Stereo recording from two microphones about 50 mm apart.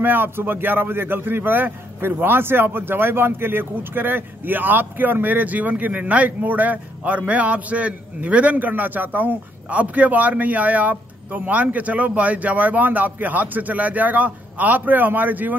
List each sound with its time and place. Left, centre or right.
0.0 s a man's voice: right